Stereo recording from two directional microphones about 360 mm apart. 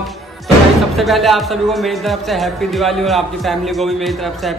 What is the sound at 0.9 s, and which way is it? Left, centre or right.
Speech, centre.